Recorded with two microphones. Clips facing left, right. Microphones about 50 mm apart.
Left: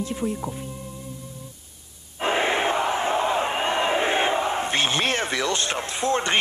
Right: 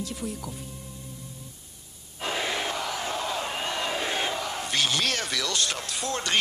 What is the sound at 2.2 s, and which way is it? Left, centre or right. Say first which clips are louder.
Crowd: left 7 dB; left.